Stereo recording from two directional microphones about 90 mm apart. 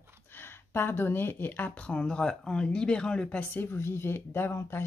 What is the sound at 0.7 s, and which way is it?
Speech, 25° left (ahead or behind).